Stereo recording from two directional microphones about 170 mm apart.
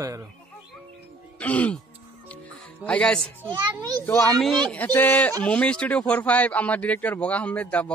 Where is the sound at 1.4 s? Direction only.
10° left (ahead or behind).